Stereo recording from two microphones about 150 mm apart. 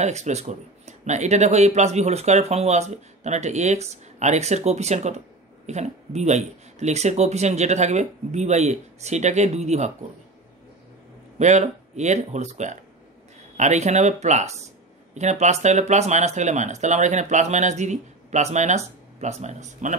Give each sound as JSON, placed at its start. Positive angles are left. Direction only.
{"t": 0.0, "sound": "speech", "side_deg": -50}
{"t": 11.3, "sound": "speech", "side_deg": -50}